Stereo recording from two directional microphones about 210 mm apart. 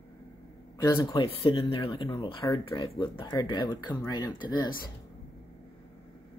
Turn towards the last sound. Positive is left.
turn(degrees=20)  # may be behind; listen again after turning